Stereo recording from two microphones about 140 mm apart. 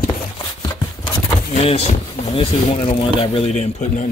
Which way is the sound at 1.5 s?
45° left (ahead or behind).